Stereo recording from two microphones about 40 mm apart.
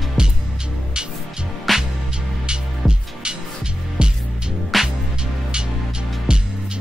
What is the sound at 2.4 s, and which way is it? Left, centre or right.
Music, right.